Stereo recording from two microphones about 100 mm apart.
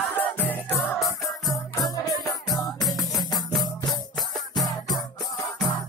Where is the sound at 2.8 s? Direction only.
Centre (ahead or behind).